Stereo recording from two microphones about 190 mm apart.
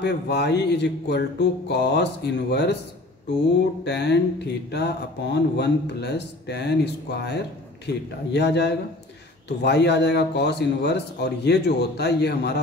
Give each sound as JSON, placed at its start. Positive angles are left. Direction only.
{"t": 0.0, "sound": "speech", "side_deg": 60}
{"t": 3.8, "sound": "speech", "side_deg": 65}